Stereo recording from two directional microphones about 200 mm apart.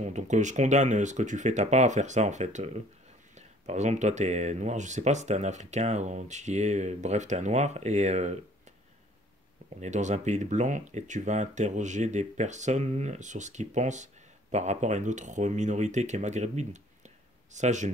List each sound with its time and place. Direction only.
0.0 s speech: 35° right (ahead or behind)
9.8 s speech: 35° right (ahead or behind)